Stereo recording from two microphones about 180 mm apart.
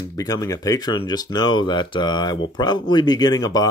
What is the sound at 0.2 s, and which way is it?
Speech, 20° left (ahead or behind).